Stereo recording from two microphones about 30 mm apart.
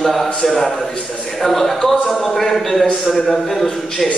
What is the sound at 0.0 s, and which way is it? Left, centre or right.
Speech, centre.